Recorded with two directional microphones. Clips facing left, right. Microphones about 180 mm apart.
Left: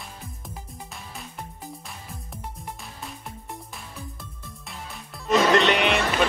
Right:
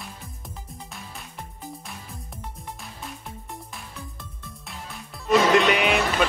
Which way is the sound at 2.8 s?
Centre (ahead or behind).